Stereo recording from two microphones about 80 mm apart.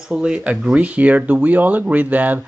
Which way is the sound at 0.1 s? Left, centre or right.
Centre.